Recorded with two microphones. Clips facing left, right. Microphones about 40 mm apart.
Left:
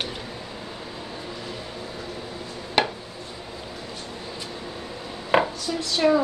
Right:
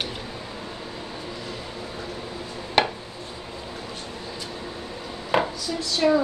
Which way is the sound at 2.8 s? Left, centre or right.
Centre.